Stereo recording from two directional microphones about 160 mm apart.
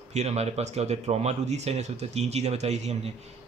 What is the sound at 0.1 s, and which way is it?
A man's voice, 45° right (ahead or behind).